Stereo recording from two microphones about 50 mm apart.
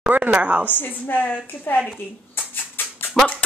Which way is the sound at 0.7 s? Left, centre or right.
Left.